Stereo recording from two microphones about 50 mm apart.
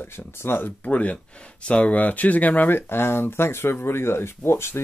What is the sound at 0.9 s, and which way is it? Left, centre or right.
Speech, left.